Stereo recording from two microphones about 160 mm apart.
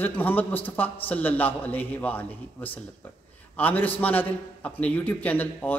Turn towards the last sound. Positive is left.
turn(degrees=10)  # may be behind; listen again after turning